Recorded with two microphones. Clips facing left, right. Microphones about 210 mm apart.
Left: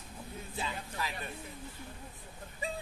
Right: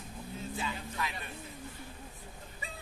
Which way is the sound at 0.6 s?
35° left (ahead or behind).